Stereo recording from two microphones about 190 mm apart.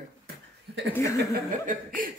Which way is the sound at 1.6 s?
45° right (ahead or behind).